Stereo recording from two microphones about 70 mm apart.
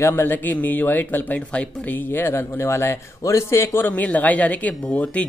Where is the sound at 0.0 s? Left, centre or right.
Left.